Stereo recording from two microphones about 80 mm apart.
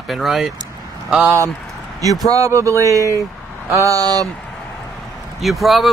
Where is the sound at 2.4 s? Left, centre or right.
Right.